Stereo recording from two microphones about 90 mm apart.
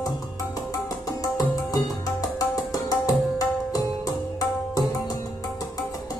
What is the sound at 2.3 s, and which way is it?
Music, 40° left (ahead or behind).